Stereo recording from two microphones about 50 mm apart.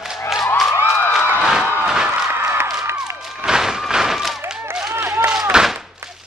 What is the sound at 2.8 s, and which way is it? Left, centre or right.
Music, right.